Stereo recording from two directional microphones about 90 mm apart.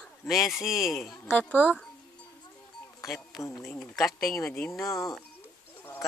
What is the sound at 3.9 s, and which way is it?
Speech, centre (ahead or behind).